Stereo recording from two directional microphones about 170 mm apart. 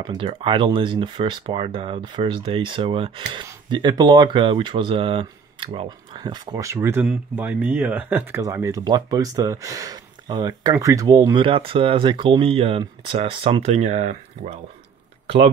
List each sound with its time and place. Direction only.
0.0 s speech: 30° right (ahead or behind)